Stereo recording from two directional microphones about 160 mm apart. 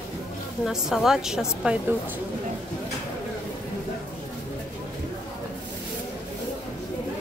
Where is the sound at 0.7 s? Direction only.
Centre (ahead or behind).